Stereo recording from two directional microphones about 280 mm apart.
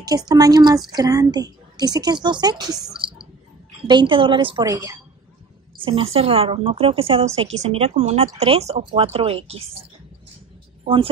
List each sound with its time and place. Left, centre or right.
0.0 s a woman's voice: centre
3.0 s whispering: centre
3.8 s a woman's voice: centre